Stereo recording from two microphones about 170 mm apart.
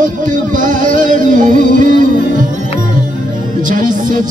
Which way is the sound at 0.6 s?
50° right (ahead or behind).